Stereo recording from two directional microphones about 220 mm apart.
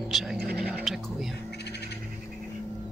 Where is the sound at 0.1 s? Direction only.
Centre (ahead or behind).